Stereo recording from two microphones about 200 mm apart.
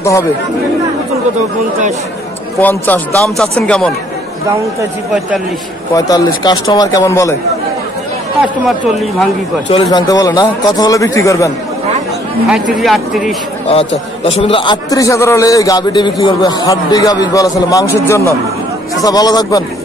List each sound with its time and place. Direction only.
2.6 s a man's voice: 10° left (ahead or behind)
5.9 s a man's voice: 20° left (ahead or behind)
8.4 s speech: centre (ahead or behind)
9.7 s a man's voice: 25° left (ahead or behind)
12.4 s speech: centre (ahead or behind)
13.7 s a man's voice: 30° left (ahead or behind)